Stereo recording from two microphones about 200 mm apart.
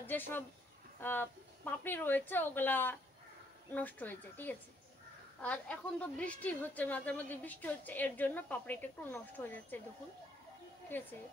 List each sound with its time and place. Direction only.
0.0 s a woman's voice: 10° left (ahead or behind)
10.9 s a woman's voice: 10° left (ahead or behind)